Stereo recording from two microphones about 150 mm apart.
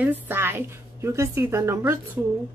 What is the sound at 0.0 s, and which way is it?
A woman's voice, 15° right (ahead or behind).